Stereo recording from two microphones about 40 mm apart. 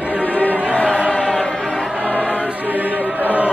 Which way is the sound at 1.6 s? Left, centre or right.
Right.